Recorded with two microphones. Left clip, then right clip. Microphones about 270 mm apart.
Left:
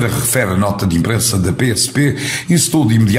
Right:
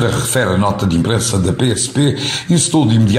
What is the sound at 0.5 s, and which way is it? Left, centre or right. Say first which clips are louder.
Speech: right 1 dB; left.